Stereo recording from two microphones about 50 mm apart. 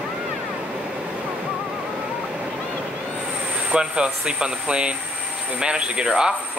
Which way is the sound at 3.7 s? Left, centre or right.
Centre.